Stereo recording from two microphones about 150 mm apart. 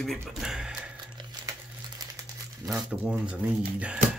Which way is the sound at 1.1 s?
25° right (ahead or behind).